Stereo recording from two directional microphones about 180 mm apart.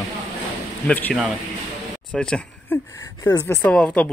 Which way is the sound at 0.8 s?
10° left (ahead or behind).